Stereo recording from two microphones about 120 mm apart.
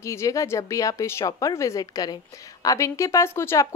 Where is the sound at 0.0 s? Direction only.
25° left (ahead or behind).